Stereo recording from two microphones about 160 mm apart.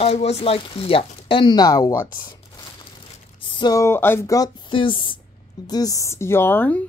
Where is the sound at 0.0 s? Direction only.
40° left (ahead or behind); by 2.3 s 25° left (ahead or behind).